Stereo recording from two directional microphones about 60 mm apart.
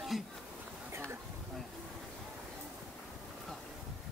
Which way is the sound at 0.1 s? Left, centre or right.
Centre.